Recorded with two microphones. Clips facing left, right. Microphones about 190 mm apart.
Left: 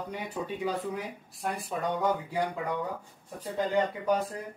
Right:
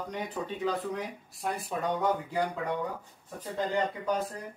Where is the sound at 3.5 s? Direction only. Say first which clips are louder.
Left 2 dB; 10° left (ahead or behind).